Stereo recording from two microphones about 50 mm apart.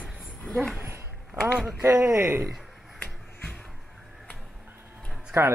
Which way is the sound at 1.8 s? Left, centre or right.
Right.